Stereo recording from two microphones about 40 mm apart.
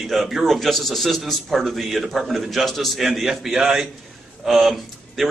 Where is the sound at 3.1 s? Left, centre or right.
Centre.